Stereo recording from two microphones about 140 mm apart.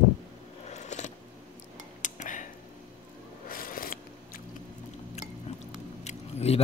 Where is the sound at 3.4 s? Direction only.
90° left.